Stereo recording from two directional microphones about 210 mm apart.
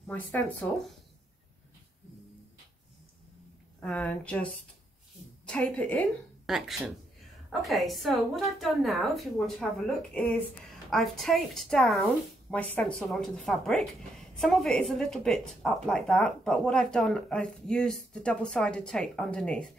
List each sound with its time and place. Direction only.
0.0 s speech: 10° left (ahead or behind)
3.8 s a woman's voice: 5° left (ahead or behind)
5.5 s a woman's voice: 5° left (ahead or behind)
7.6 s a woman's voice: centre (ahead or behind)